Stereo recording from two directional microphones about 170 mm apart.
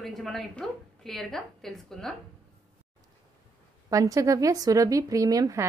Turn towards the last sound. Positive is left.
turn(degrees=-20)  # may be behind; listen again after turning